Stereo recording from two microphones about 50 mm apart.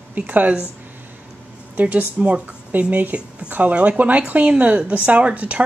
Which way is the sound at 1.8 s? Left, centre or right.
Right.